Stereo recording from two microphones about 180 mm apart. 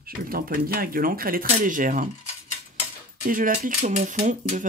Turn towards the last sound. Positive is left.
turn(degrees=-45)  # may be behind; listen again after turning